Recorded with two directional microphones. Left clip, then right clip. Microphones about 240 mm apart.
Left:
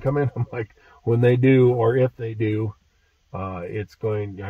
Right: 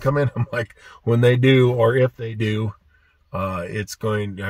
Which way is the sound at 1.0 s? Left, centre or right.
Centre.